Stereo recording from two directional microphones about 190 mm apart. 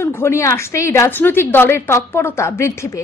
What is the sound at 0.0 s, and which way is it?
A woman's voice, 15° left (ahead or behind).